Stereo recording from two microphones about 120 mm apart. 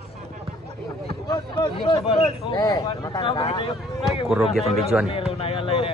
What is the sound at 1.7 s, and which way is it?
Speech, 50° left (ahead or behind).